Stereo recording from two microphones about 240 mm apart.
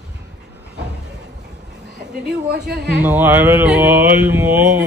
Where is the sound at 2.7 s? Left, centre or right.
Right.